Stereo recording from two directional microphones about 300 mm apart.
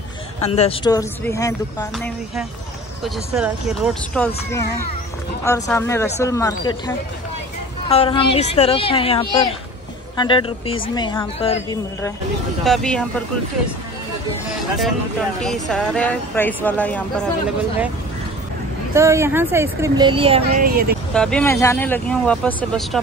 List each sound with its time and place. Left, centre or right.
0.4 s speech: centre
3.0 s speech: centre
5.4 s speech: centre
7.9 s a woman's voice: centre
12.6 s speech: centre
14.8 s speech: centre
18.9 s speech: centre; by 20.8 s right
21.1 s speech: centre